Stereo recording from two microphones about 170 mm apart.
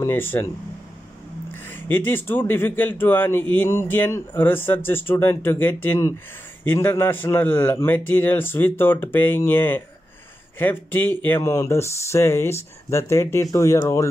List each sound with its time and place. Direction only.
0.0 s speech: 15° left (ahead or behind)
1.5 s speech: 10° left (ahead or behind)